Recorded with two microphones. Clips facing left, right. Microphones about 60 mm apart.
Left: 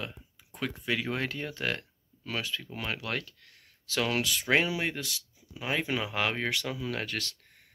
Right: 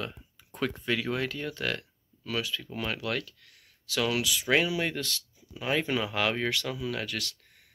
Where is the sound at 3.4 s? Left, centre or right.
Left.